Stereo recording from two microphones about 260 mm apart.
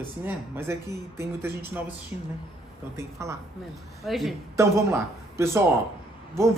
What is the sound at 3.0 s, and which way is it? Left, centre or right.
Speech, centre.